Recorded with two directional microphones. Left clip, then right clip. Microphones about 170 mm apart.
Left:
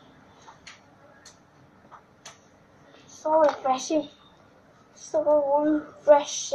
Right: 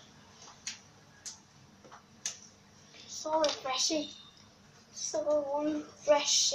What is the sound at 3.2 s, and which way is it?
Speech, 15° right (ahead or behind).